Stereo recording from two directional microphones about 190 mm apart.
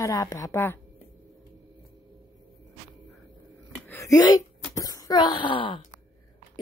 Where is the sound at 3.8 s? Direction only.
15° left (ahead or behind).